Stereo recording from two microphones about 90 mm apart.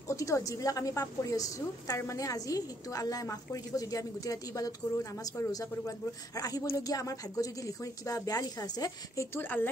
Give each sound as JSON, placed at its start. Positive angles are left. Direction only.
{"t": 0.1, "sound": "a woman's voice", "side_deg": 35}
{"t": 9.4, "sound": "a woman's voice", "side_deg": 20}